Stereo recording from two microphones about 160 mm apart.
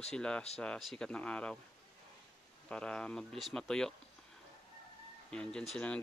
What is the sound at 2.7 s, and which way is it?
Speech, 5° left (ahead or behind).